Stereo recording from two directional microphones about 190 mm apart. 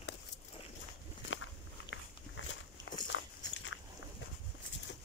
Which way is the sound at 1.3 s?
90° left.